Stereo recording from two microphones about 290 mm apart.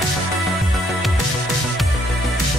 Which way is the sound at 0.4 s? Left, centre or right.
Centre.